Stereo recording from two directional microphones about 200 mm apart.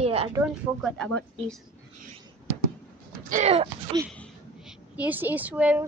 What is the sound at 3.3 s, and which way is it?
Speech, 35° right (ahead or behind).